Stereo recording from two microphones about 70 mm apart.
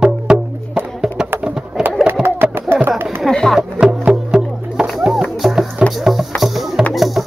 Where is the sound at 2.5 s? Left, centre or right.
Right.